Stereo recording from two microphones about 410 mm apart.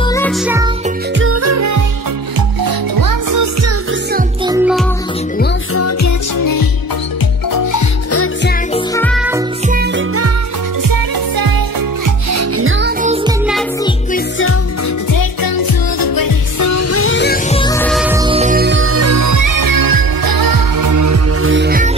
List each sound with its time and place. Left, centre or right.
0.1 s music: centre
1.2 s music: right
2.6 s music: right
4.5 s music: centre
5.4 s music: left
8.1 s music: left
8.7 s music: centre
9.7 s music: right
10.8 s music: right
12.3 s music: right
13.0 s music: centre
15.1 s music: left; by 21.9 s right